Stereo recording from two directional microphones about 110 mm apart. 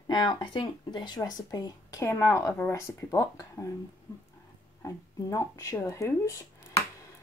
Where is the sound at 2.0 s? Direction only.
25° left (ahead or behind).